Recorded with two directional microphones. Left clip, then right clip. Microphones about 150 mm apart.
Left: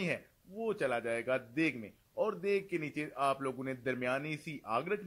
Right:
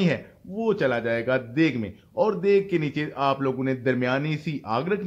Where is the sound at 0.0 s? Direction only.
15° left (ahead or behind).